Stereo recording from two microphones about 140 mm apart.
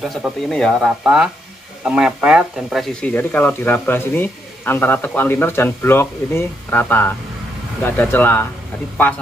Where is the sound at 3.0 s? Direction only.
10° left (ahead or behind).